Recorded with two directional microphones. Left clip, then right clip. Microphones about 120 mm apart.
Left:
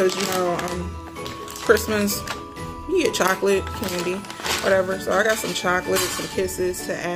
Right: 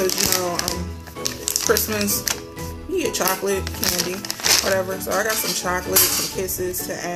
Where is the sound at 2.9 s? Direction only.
35° left (ahead or behind).